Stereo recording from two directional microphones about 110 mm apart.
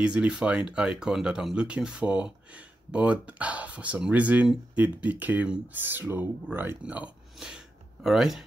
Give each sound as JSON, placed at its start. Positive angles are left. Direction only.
{"t": 0.0, "sound": "speech", "side_deg": -10}